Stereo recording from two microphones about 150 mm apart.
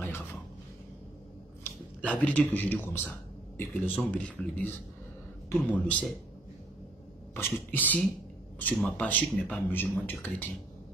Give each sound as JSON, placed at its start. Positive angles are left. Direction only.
{"t": 0.0, "sound": "a sound", "side_deg": 15}
{"t": 1.6, "sound": "speech", "side_deg": 10}
{"t": 7.3, "sound": "speech", "side_deg": 15}